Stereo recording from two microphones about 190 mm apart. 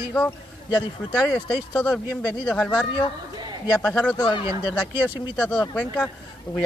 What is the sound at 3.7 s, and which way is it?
Speech, 5° left (ahead or behind).